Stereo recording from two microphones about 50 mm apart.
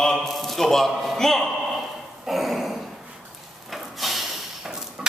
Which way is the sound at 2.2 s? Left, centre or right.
Centre.